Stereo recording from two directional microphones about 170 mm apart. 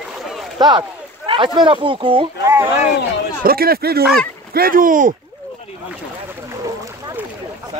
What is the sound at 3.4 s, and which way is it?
Speech, 60° right (ahead or behind).